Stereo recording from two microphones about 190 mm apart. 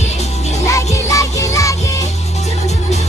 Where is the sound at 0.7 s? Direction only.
15° left (ahead or behind).